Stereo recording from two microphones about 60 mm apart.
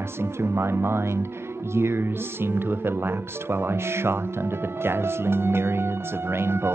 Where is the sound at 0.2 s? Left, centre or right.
Right.